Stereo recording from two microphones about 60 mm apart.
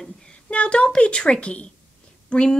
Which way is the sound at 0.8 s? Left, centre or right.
Centre.